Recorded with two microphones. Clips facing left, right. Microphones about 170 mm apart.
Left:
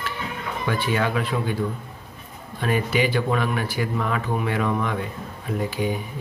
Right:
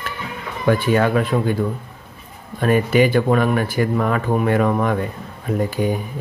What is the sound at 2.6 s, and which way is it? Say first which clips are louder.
Speech: right 7 dB; 50° right (ahead or behind).